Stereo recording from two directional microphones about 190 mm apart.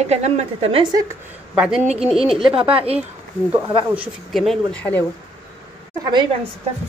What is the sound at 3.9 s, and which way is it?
A woman's voice, 5° right (ahead or behind).